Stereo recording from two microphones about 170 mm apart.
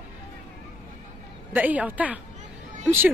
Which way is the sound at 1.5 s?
10° right (ahead or behind).